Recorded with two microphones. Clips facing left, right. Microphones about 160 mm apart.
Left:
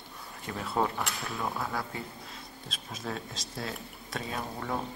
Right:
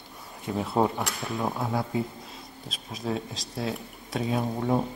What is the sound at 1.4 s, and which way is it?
Speech, 20° right (ahead or behind).